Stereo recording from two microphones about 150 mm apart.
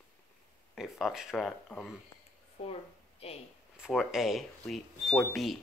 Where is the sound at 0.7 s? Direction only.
Centre (ahead or behind).